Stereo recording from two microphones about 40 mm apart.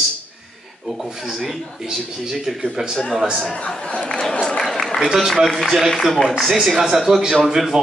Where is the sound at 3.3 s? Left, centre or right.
Centre.